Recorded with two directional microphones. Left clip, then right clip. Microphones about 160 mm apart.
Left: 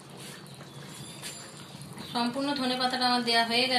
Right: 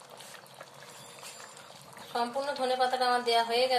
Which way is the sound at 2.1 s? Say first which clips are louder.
Left 1 dB; 75° right (ahead or behind).